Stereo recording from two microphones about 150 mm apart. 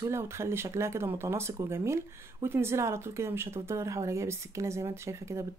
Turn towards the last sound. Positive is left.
turn(degrees=-20)  # may be behind; listen again after turning